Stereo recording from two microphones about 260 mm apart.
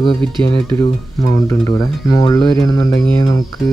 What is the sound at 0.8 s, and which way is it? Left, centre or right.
Speech, centre.